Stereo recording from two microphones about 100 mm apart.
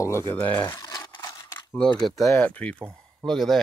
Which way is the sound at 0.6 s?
35° left (ahead or behind).